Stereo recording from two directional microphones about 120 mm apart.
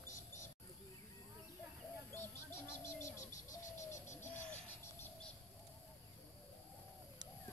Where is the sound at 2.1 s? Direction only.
20° left (ahead or behind).